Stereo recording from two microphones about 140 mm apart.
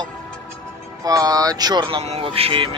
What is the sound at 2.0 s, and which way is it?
Speech, 45° right (ahead or behind).